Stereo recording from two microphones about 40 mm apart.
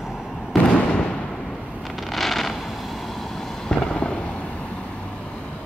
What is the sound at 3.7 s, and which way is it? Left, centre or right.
Fireworks, left.